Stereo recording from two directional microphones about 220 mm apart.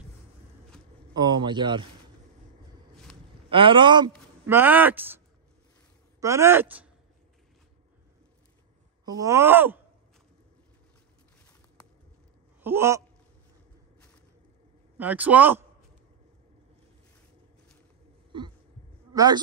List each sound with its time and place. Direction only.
1.1 s speech: 20° right (ahead or behind)
3.4 s speech: 25° right (ahead or behind)
4.5 s speech: 10° right (ahead or behind)
6.2 s speech: 10° right (ahead or behind)
9.0 s speech: 15° right (ahead or behind)
12.6 s speech: 10° right (ahead or behind)
15.0 s speech: 5° right (ahead or behind)
18.3 s heart sounds: 20° right (ahead or behind)
19.1 s a man's voice: 20° right (ahead or behind)